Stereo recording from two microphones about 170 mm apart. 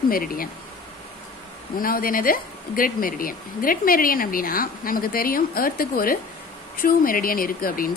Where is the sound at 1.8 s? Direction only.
55° left (ahead or behind).